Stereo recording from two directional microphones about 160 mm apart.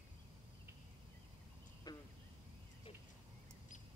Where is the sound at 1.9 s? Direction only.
25° left (ahead or behind).